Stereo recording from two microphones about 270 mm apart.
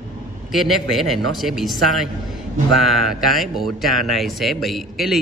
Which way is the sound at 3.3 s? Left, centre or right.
Centre.